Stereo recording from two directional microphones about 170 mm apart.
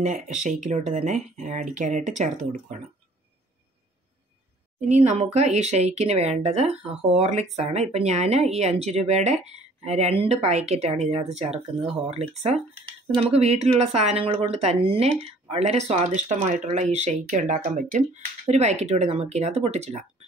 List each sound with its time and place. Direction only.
0.0 s speech: 45° right (ahead or behind)
4.7 s speech: 45° right (ahead or behind)